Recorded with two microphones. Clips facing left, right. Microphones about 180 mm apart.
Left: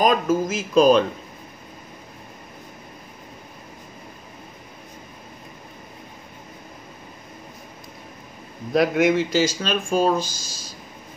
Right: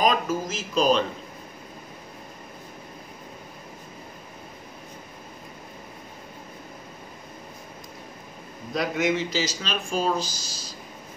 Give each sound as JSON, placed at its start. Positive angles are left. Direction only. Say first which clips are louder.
{"t": 0.0, "sound": "speech", "louder": "left 4 dB", "side_deg": 50}
{"t": 8.7, "sound": "speech", "louder": "left 7 dB", "side_deg": 55}